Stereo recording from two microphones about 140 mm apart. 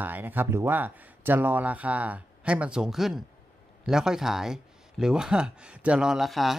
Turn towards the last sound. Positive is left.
turn(degrees=0)  # may be behind; listen again after turning